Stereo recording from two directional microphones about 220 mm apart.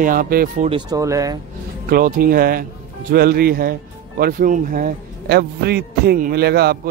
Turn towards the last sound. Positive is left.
turn(degrees=-45)  # may be behind; listen again after turning